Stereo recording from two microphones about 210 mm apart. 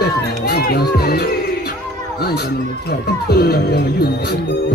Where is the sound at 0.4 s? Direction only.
45° left (ahead or behind).